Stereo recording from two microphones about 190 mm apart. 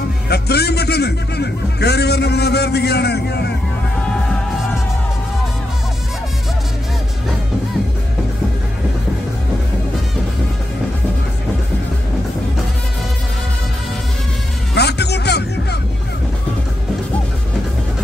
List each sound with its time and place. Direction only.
0.3 s a man's voice: 60° left (ahead or behind)
14.7 s music: 60° left (ahead or behind)